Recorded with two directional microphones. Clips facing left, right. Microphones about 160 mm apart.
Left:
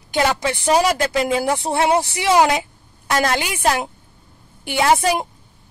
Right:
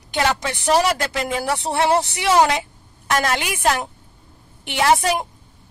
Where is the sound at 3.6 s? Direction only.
10° left (ahead or behind).